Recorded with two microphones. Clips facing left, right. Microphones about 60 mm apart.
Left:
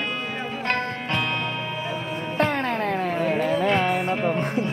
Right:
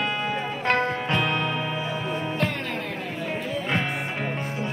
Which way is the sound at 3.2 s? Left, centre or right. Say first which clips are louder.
Left 7 dB; left.